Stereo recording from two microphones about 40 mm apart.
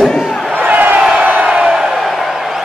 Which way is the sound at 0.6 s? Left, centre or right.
Right.